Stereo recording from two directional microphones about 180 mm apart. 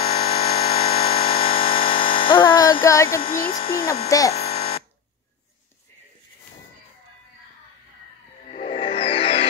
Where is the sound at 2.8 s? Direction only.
15° left (ahead or behind).